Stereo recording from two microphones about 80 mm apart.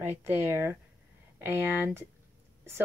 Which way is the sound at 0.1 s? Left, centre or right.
Right.